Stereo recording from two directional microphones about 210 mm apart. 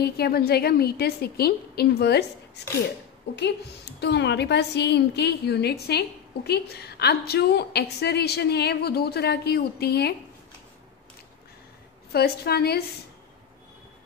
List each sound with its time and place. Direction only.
0.0 s a woman's voice: 50° left (ahead or behind)
3.3 s a woman's voice: 55° left (ahead or behind)
12.1 s a woman's voice: 50° left (ahead or behind)